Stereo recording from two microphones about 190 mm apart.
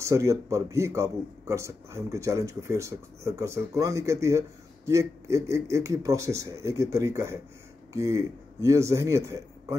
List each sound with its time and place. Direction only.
0.0 s a man's voice: 15° right (ahead or behind)